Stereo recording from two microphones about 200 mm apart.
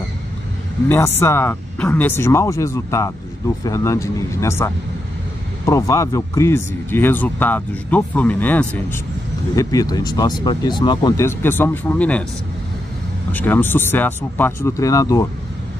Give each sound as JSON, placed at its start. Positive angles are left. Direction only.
{"t": 0.8, "sound": "speech", "side_deg": 10}
{"t": 13.3, "sound": "speech", "side_deg": 10}